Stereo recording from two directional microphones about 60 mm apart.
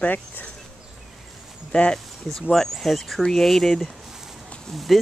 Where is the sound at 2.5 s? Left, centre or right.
Centre.